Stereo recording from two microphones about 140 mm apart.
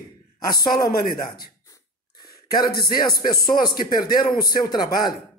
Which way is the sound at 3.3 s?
90° left.